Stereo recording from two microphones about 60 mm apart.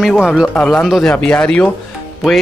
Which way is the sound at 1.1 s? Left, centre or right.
Left.